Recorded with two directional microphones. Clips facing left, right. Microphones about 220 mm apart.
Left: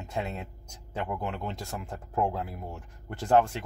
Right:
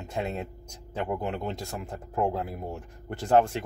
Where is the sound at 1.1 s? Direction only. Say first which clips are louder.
Right 5 dB; 20° right (ahead or behind).